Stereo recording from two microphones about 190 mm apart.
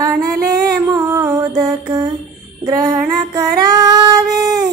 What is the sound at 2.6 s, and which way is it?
Child singing, 20° right (ahead or behind).